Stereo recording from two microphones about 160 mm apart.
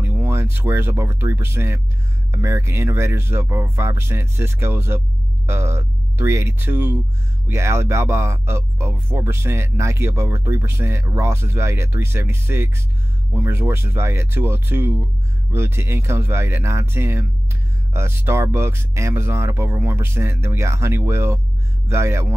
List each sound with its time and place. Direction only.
0.0 s speech: 15° right (ahead or behind)